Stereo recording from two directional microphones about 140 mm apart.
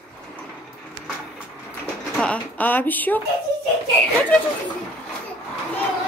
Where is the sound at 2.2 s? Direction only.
10° left (ahead or behind).